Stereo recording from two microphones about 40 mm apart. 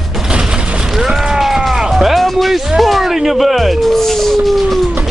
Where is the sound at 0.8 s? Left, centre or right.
Centre.